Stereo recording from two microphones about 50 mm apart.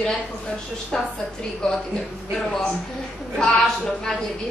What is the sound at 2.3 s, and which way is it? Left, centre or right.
Speech, centre.